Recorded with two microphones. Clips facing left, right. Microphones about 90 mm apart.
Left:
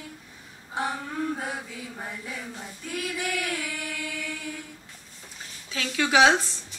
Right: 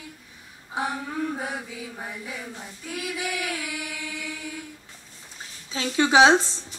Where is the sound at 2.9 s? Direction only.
5° right (ahead or behind).